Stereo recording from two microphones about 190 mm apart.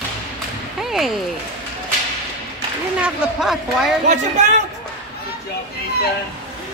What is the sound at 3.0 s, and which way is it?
Speech, 5° right (ahead or behind).